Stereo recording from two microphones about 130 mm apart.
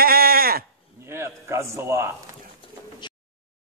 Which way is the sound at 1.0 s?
20° right (ahead or behind).